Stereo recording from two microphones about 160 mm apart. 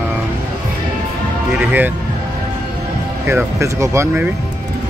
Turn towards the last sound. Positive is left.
turn(degrees=-15)  # may be behind; listen again after turning